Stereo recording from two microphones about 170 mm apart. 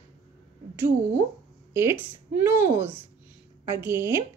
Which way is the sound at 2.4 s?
15° right (ahead or behind).